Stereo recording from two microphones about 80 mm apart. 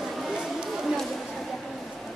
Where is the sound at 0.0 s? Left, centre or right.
Centre.